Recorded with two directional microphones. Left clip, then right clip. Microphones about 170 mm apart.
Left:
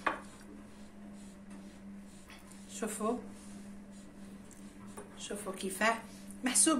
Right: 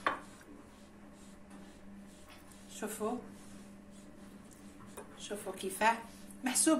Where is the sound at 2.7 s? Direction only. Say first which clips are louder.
Left 2 dB; 35° left (ahead or behind).